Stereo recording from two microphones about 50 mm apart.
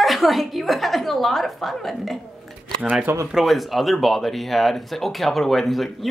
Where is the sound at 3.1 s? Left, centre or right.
Right.